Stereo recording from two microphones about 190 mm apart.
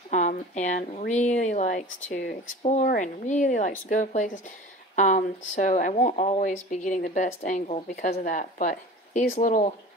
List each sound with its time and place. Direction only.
0.1 s speech: 40° left (ahead or behind)